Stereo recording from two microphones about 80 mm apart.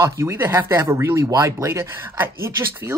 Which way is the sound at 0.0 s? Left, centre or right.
Right.